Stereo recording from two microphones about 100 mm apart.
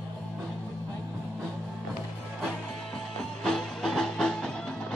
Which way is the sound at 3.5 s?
5° left (ahead or behind).